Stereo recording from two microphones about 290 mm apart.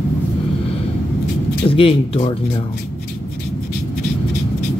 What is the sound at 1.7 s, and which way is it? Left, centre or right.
Speech, centre.